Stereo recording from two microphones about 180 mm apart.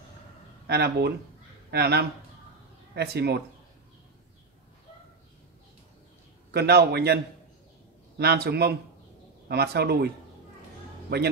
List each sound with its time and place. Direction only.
0.7 s a man's voice: 65° right (ahead or behind)
6.5 s a man's voice: 65° right (ahead or behind)
8.2 s a man's voice: 65° right (ahead or behind)